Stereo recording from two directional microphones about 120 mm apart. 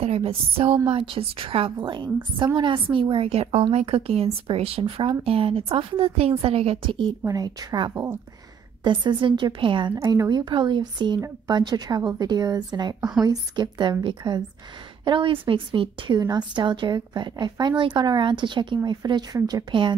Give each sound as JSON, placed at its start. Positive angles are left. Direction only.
{"t": 0.0, "sound": "a woman's voice", "side_deg": -55}
{"t": 7.2, "sound": "a woman's voice", "side_deg": -30}
{"t": 9.9, "sound": "a woman's voice", "side_deg": -30}